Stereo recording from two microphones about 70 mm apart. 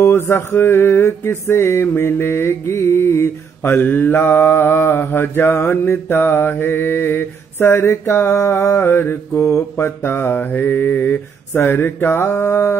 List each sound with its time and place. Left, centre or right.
0.0 s music: left